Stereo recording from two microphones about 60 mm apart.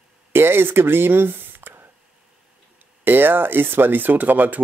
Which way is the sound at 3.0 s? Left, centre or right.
Right.